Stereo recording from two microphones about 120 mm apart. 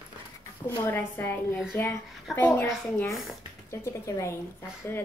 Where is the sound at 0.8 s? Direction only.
15° left (ahead or behind).